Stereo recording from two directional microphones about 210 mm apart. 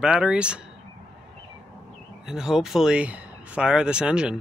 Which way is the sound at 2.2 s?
Centre (ahead or behind).